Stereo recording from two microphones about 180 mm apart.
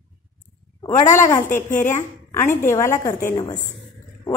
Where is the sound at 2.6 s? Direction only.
15° left (ahead or behind).